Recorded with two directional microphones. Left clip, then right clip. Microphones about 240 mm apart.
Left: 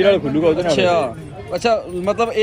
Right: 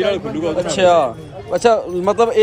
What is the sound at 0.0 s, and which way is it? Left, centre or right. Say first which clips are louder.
Speech: left 4 dB; centre.